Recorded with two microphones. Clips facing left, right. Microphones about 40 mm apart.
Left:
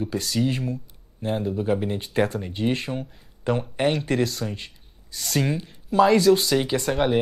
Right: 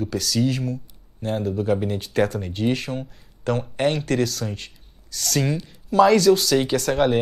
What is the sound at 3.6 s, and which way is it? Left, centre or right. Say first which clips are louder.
Speech: right 2 dB; centre.